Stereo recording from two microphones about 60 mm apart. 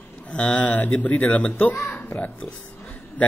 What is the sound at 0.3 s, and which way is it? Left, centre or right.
Speech, left.